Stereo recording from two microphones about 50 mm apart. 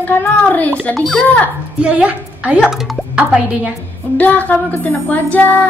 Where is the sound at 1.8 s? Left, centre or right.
Right.